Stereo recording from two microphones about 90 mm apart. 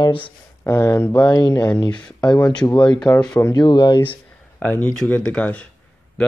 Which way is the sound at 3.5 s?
55° left (ahead or behind).